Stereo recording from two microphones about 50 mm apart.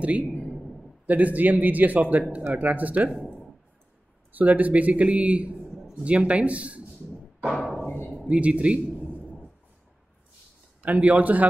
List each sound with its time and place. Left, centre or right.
1.0 s speech: right
4.3 s speech: right
5.7 s a sound: centre
6.0 s speech: right
7.4 s music: centre
8.3 s a man's voice: right
9.1 s a sound: left
10.9 s speech: right